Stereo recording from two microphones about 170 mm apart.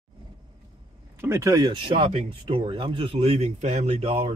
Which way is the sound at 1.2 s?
15° right (ahead or behind).